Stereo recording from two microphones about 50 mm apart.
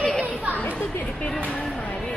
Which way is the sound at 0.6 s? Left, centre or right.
Left.